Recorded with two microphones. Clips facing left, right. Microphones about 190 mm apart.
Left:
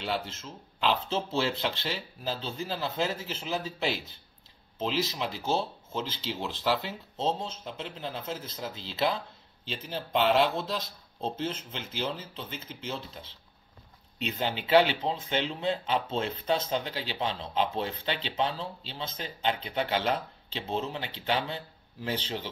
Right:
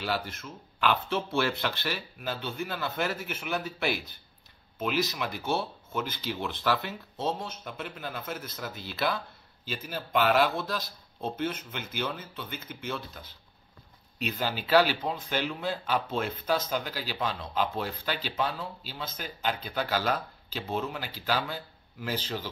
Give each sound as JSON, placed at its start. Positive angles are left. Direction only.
{"t": 0.0, "sound": "speech", "side_deg": 25}